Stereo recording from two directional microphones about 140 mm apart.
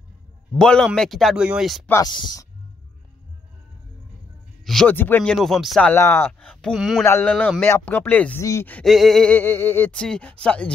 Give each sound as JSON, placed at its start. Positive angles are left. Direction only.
{"t": 0.6, "sound": "speech", "side_deg": 5}
{"t": 2.0, "sound": "speech", "side_deg": 30}
{"t": 4.8, "sound": "speech", "side_deg": 15}
{"t": 5.9, "sound": "speech", "side_deg": 20}
{"t": 6.4, "sound": "speech", "side_deg": 5}
{"t": 7.1, "sound": "speech", "side_deg": 15}
{"t": 8.8, "sound": "speech", "side_deg": 0}